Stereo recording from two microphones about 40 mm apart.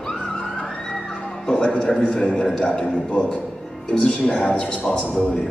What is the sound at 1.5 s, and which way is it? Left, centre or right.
A man's voice, left.